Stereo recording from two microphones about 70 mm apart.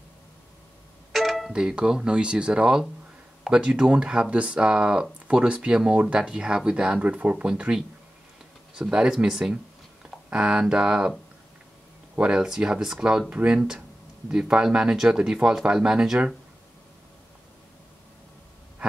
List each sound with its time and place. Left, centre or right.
1.1 s music: centre
1.5 s speech: centre
12.2 s speech: centre
13.6 s speech: centre